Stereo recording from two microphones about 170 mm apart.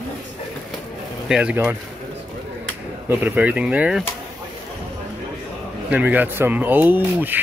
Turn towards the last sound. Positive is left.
turn(degrees=-10)  # may be behind; listen again after turning